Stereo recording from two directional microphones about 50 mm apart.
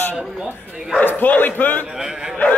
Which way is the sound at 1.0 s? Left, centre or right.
Left.